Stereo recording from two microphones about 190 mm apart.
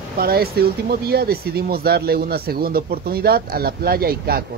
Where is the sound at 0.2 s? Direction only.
55° right (ahead or behind).